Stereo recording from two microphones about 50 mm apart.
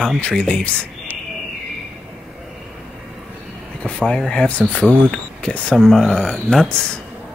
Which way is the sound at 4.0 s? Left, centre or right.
Centre.